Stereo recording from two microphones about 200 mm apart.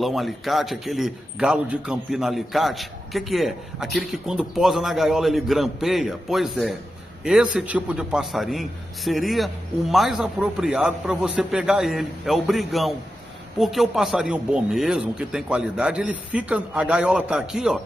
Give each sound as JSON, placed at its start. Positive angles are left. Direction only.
{"t": 0.0, "sound": "a man's voice", "side_deg": 0}